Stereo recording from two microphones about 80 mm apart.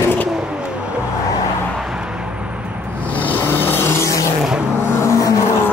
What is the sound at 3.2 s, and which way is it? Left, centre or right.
Vehicle, left.